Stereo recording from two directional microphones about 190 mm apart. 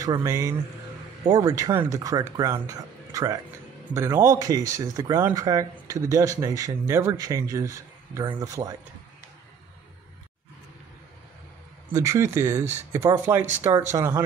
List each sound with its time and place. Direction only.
0.0 s speech: 15° right (ahead or behind)
11.9 s speech: 15° right (ahead or behind)